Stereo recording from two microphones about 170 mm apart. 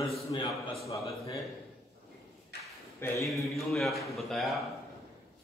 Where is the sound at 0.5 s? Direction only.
Centre (ahead or behind).